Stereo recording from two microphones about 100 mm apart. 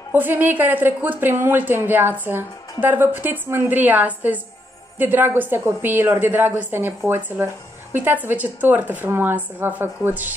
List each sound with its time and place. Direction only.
0.1 s a woman's voice: 20° right (ahead or behind)